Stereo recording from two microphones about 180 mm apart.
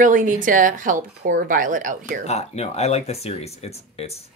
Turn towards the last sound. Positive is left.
turn(degrees=35)  # may be behind; listen again after turning